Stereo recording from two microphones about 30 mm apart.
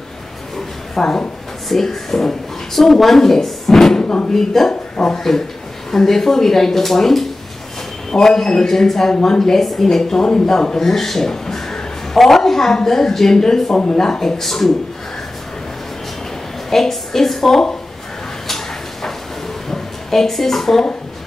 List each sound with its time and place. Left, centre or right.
1.0 s a man's voice: centre
9.1 s speech: left
9.4 s speech: centre
13.7 s speech: left
14.4 s speech: centre
16.7 s a woman's voice: centre
19.7 s a woman's voice: centre